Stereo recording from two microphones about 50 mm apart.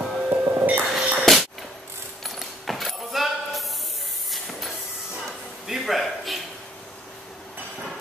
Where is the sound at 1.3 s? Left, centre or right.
Centre.